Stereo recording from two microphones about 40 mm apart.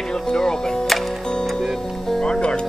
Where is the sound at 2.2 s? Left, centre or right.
Left.